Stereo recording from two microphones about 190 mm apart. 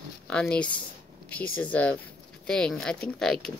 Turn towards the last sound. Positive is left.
turn(degrees=0)  # may be behind; listen again after turning